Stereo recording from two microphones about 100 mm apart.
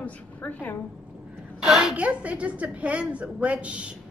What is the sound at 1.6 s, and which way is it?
A woman's voice, 5° right (ahead or behind).